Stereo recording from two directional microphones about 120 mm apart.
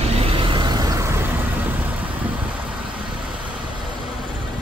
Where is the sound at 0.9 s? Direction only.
20° right (ahead or behind).